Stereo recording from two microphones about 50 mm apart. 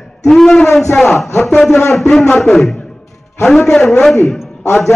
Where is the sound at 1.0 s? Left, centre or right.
Centre.